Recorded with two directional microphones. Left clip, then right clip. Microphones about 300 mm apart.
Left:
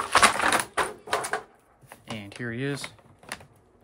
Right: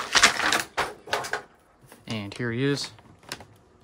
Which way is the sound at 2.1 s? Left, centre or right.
Centre.